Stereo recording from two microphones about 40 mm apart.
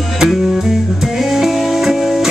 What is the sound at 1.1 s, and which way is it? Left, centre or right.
Music, centre.